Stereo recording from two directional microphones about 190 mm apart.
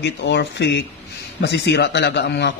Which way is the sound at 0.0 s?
65° left (ahead or behind).